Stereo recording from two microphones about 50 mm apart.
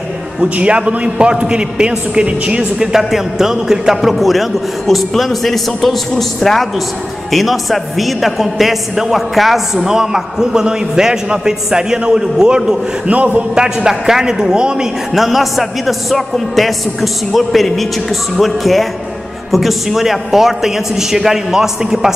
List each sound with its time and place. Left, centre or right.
0.6 s a man's voice: right
2.9 s a man's voice: centre
13.1 s a man's voice: right
13.6 s a man's voice: centre